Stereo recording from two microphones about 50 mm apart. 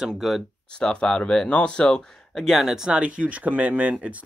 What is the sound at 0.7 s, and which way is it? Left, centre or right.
Speech, centre.